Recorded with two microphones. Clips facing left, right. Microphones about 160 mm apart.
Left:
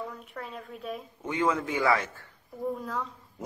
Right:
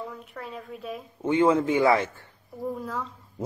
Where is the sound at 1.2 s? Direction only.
30° right (ahead or behind).